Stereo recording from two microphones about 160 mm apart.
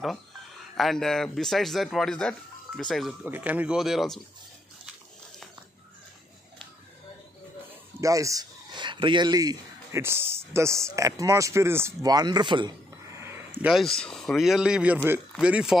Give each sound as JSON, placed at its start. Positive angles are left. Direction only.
{"t": 0.7, "sound": "speech", "side_deg": 0}
{"t": 3.3, "sound": "speech", "side_deg": -10}
{"t": 8.0, "sound": "speech", "side_deg": -20}
{"t": 13.6, "sound": "speech", "side_deg": -5}